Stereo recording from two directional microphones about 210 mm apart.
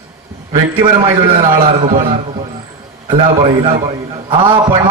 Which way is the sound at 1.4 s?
30° right (ahead or behind).